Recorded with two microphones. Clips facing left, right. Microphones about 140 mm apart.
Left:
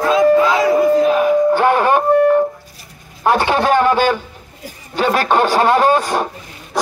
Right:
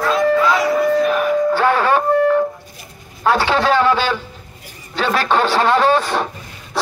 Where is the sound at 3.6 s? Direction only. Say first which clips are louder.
Left 3 dB; 50° left (ahead or behind).